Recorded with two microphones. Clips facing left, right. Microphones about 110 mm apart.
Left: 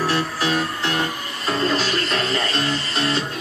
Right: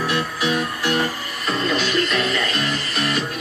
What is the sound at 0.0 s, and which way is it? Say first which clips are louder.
Music: left 1 dB; 35° left (ahead or behind).